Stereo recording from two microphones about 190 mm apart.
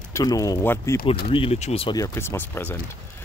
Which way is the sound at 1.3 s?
30° left (ahead or behind).